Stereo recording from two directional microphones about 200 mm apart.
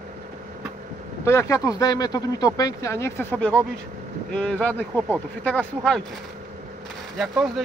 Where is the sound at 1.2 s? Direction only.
15° left (ahead or behind).